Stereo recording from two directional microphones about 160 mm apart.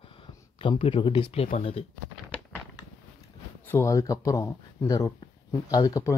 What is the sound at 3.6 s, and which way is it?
Speech, 15° left (ahead or behind).